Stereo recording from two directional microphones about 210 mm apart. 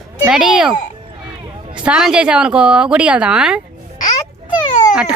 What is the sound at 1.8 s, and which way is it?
A woman's voice, 5° right (ahead or behind).